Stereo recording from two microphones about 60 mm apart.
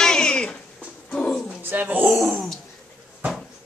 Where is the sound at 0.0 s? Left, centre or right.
Centre.